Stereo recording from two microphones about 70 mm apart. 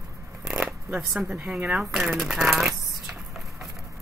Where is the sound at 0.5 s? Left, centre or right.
Right.